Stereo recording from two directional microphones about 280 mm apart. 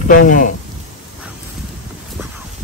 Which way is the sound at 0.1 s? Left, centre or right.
Left.